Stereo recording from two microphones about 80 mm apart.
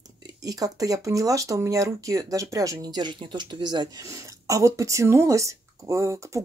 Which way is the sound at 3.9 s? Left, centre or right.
Right.